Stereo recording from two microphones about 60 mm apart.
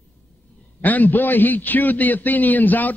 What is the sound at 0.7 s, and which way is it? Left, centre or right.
A man's voice, left.